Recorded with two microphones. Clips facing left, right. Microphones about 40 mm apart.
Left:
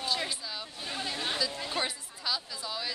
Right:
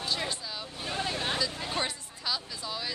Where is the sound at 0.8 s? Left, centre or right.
Centre.